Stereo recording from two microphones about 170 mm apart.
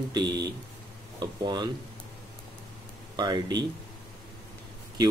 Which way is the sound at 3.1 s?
25° right (ahead or behind).